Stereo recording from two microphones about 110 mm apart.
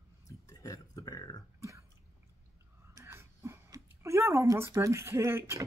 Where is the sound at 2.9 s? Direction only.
25° right (ahead or behind).